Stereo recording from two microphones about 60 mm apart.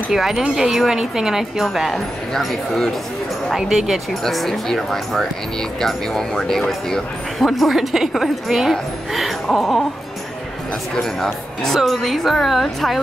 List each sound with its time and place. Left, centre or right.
0.1 s speech: centre
3.5 s speech: centre
4.1 s speech: centre
11.0 s speech: centre